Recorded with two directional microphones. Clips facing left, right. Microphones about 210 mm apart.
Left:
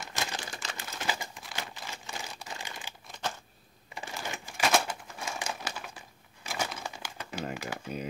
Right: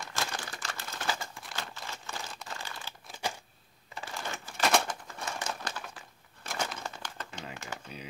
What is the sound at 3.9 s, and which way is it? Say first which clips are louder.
Crumpling: left 1 dB; 15° left (ahead or behind).